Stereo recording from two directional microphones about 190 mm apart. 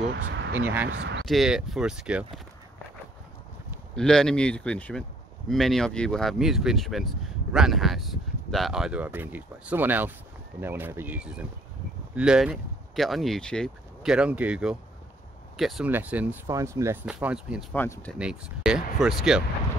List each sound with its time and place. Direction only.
0.6 s speech: 10° right (ahead or behind)
0.8 s speech: 65° right (ahead or behind)
1.2 s speech: centre (ahead or behind)
3.9 s speech: 5° left (ahead or behind)
17.7 s speech: 10° left (ahead or behind)
18.1 s speech: 5° right (ahead or behind)